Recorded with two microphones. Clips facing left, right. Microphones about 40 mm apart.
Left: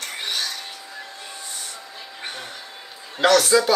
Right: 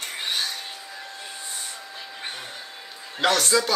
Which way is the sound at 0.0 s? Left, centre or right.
Right.